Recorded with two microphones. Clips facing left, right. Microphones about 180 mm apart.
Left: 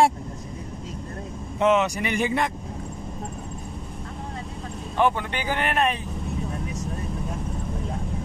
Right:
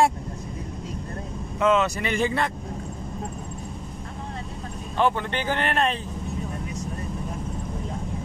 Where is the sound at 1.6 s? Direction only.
20° left (ahead or behind).